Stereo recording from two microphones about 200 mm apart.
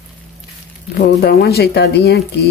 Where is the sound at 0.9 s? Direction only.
50° left (ahead or behind).